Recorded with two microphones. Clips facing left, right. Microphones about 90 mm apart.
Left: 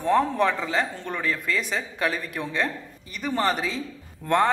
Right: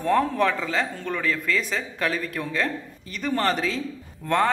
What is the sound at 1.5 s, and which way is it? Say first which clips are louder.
Speech: right 1 dB; 5° left (ahead or behind).